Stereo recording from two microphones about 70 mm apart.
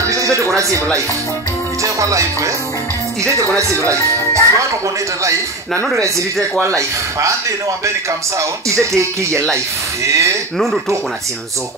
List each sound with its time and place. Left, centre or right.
0.0 s a sound: right
1.8 s speech: right
3.9 s music: right
5.9 s speech: right